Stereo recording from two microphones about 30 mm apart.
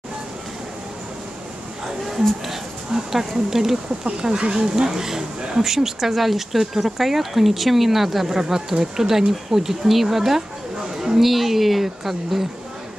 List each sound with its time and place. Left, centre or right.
2.9 s speech: centre
4.0 s speech: right
11.0 s a sound: centre
11.2 s speech: centre